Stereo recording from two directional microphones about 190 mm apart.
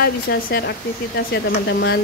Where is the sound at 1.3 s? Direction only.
60° left (ahead or behind).